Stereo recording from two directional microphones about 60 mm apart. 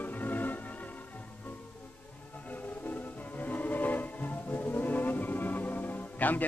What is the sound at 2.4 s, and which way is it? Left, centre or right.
Music, left.